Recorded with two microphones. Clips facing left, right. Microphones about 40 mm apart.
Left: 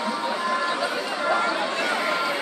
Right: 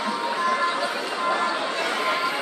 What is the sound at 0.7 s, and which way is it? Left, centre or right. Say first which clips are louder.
Run: even; centre.